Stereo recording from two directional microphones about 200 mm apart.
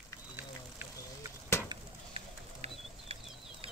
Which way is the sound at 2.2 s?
30° right (ahead or behind).